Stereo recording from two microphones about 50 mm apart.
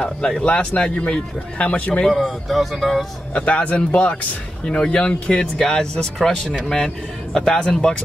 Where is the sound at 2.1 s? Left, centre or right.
Centre.